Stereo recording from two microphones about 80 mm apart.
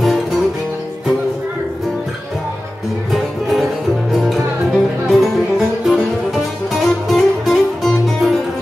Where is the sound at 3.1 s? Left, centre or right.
Centre.